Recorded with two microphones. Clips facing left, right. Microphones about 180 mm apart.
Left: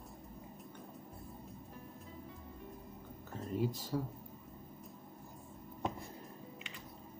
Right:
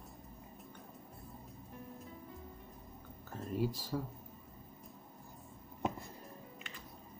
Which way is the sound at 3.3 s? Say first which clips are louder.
Even; 5° right (ahead or behind).